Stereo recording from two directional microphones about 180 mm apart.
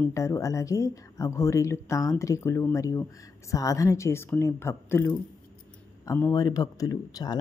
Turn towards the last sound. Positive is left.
turn(degrees=20)  # may be behind; listen again after turning